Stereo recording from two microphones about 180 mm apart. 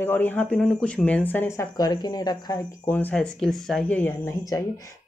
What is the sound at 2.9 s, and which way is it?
Speech, 10° left (ahead or behind).